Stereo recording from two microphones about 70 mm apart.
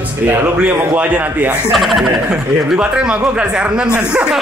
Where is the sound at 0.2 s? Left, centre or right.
Right.